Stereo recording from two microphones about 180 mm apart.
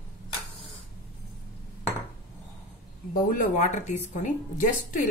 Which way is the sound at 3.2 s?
45° left (ahead or behind).